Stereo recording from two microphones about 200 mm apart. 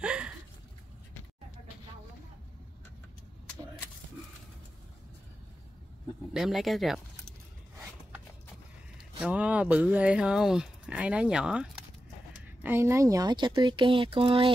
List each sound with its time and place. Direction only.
0.0 s a sound: 5° right (ahead or behind)
6.3 s speech: centre (ahead or behind)
9.2 s speech: 5° right (ahead or behind); by 14.5 s 25° right (ahead or behind)